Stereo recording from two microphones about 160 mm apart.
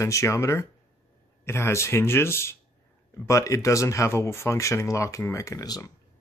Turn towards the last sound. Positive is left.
turn(degrees=20)  # may be behind; listen again after turning